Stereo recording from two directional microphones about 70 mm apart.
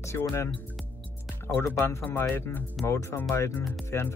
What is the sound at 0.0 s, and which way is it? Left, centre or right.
Speech, left.